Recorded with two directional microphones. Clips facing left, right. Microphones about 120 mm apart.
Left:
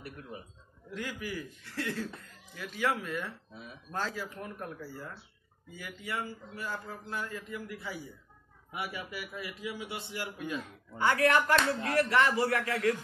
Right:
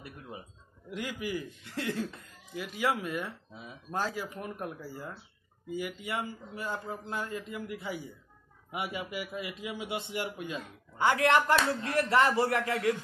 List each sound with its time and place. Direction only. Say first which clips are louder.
0.0 s a man's voice: left 1 dB; 20° right (ahead or behind)